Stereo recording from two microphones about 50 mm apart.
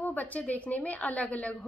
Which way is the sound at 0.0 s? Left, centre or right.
Left.